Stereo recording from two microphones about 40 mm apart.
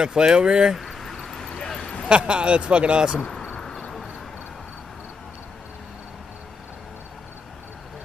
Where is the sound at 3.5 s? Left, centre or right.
Left.